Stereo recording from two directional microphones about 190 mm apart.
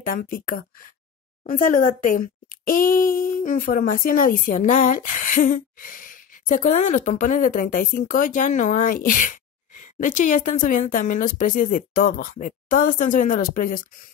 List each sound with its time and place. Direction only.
0.0 s speech: 50° left (ahead or behind)